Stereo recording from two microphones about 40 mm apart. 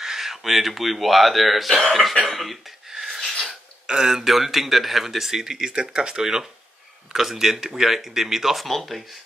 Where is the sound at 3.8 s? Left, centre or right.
Centre.